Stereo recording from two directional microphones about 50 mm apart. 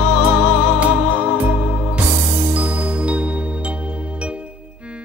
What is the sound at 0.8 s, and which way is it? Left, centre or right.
Music, right.